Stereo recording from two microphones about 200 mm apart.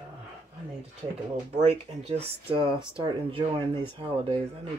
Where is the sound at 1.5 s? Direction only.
30° right (ahead or behind).